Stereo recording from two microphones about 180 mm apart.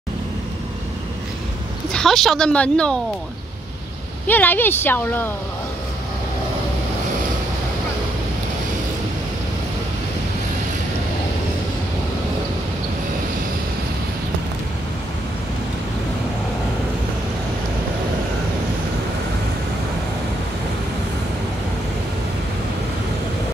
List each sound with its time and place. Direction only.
1.9 s speech: 5° left (ahead or behind)
4.3 s speech: 10° left (ahead or behind)